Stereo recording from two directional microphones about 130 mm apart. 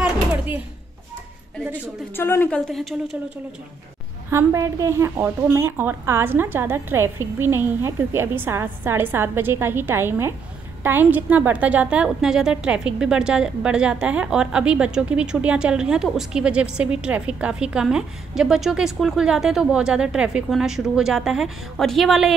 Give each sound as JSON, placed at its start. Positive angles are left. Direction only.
{"t": 2.1, "sound": "a woman's voice", "side_deg": 15}
{"t": 2.7, "sound": "a woman's voice", "side_deg": 0}
{"t": 4.3, "sound": "a woman's voice", "side_deg": -20}